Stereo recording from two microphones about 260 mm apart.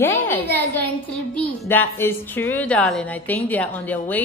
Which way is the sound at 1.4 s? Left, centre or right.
Centre.